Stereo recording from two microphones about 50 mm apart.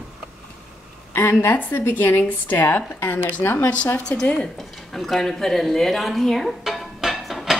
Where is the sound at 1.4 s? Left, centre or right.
Left.